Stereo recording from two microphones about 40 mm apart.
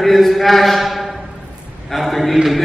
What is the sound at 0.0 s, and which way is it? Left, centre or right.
A man's voice, centre.